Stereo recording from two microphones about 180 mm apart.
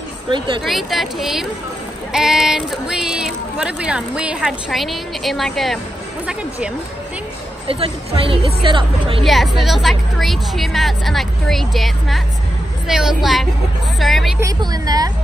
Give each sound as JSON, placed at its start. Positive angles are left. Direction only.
{"t": 0.6, "sound": "speech", "side_deg": 0}
{"t": 7.6, "sound": "a woman's voice", "side_deg": -30}
{"t": 9.2, "sound": "speech", "side_deg": 0}
{"t": 14.4, "sound": "a woman's voice", "side_deg": -20}